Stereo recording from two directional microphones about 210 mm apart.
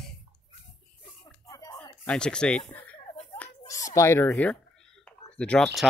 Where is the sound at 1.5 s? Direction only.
15° left (ahead or behind).